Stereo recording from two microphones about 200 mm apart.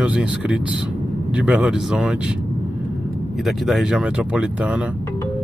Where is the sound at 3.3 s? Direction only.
Centre (ahead or behind).